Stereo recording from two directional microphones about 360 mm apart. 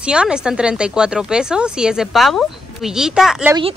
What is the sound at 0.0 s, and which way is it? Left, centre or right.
Speech, centre.